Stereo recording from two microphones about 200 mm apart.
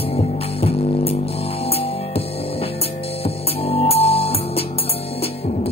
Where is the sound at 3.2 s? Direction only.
30° left (ahead or behind).